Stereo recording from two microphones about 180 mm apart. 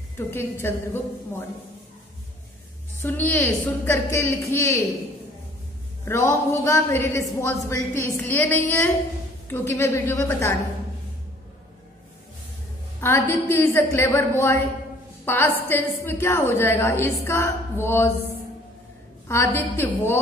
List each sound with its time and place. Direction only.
0.3 s a woman's voice: 10° left (ahead or behind)
3.0 s a woman's voice: 10° left (ahead or behind)
6.0 s a woman's voice: 15° left (ahead or behind)
13.0 s a woman's voice: 10° left (ahead or behind)
19.2 s a woman's voice: 15° left (ahead or behind)